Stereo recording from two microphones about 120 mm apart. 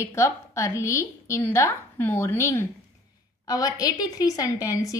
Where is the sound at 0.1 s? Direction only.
25° left (ahead or behind).